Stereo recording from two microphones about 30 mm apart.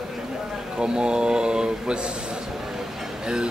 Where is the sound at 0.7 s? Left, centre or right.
Right.